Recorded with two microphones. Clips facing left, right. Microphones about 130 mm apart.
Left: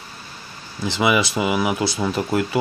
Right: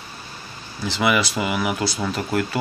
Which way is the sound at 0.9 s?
20° left (ahead or behind).